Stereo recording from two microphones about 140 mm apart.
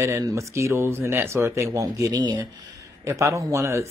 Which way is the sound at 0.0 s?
20° right (ahead or behind).